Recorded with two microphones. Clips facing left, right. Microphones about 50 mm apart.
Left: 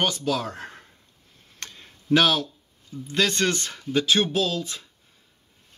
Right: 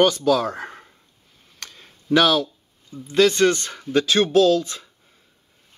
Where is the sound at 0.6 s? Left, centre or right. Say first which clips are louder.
Right 5 dB; right.